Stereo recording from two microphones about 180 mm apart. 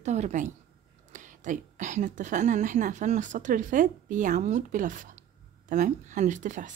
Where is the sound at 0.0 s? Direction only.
40° right (ahead or behind).